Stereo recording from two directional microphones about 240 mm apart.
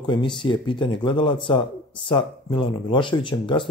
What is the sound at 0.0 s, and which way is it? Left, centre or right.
Speech, centre.